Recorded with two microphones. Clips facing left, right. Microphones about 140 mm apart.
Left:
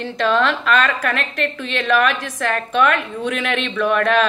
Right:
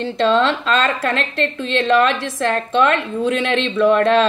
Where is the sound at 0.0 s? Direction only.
25° right (ahead or behind).